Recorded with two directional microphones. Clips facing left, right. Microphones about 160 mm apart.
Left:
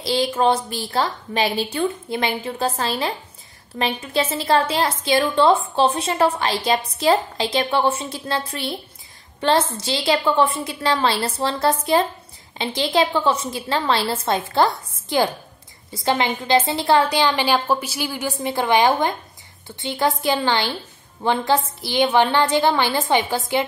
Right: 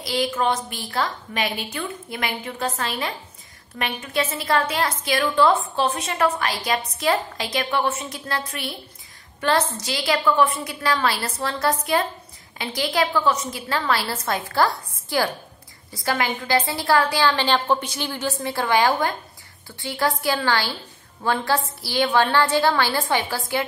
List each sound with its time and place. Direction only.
0.0 s a woman's voice: 30° left (ahead or behind)